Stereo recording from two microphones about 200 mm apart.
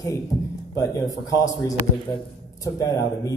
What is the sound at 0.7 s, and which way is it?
A man's voice, 20° left (ahead or behind).